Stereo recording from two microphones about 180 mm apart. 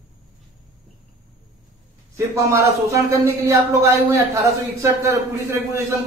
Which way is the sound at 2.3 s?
15° right (ahead or behind).